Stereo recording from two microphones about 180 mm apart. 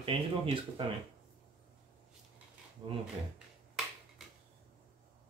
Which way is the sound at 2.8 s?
25° right (ahead or behind).